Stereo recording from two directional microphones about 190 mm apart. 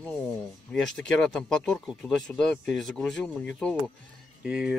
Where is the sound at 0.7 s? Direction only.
Centre (ahead or behind).